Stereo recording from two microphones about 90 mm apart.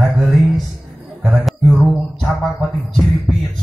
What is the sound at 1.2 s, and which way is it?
Music, centre (ahead or behind).